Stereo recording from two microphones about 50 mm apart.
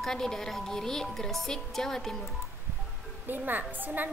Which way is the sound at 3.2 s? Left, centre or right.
Right.